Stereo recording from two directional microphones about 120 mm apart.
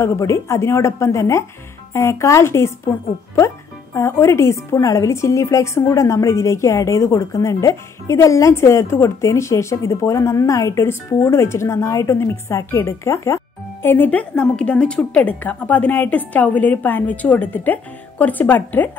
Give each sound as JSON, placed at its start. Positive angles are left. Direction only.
{"t": 0.0, "sound": "a woman's voice", "side_deg": 25}